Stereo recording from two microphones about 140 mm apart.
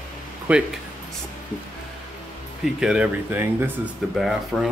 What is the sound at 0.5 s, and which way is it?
Speech, 10° right (ahead or behind).